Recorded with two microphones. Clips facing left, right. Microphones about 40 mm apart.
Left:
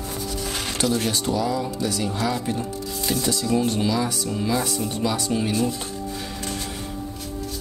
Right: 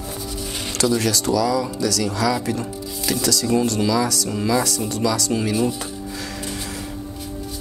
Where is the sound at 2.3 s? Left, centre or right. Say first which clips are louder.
Right 2 dB; right.